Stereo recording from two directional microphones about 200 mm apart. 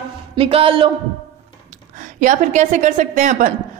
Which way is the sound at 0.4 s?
30° right (ahead or behind).